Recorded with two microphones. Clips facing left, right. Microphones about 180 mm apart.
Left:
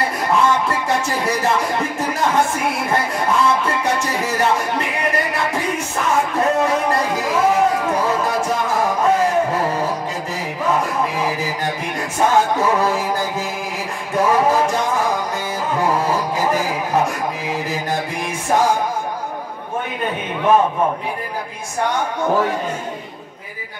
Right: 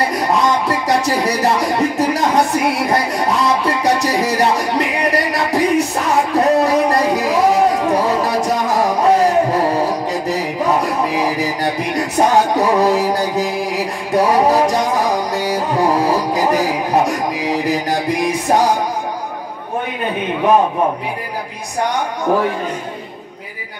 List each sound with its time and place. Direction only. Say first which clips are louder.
0.0 s music: right 2 dB; 35° right (ahead or behind)